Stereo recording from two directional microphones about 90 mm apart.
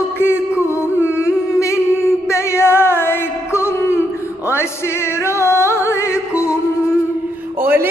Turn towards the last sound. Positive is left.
turn(degrees=-25)  # may be behind; listen again after turning